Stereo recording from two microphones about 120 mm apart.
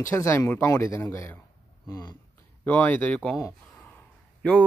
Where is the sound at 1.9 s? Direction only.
35° left (ahead or behind).